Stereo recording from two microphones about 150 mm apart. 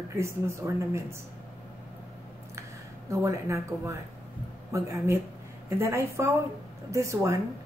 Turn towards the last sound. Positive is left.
turn(degrees=-20)  # may be behind; listen again after turning